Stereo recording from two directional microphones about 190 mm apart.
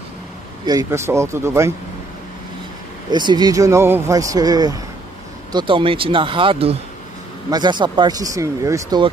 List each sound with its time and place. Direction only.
0.7 s speech: 15° right (ahead or behind)
3.1 s speech: 20° right (ahead or behind)